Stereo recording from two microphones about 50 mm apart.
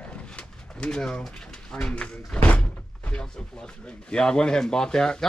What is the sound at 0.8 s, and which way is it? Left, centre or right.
Speech, centre.